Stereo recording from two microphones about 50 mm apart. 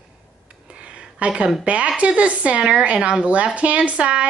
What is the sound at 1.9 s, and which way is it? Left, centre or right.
A woman's voice, right.